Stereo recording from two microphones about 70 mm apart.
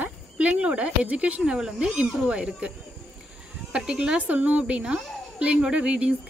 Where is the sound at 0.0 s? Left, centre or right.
Right.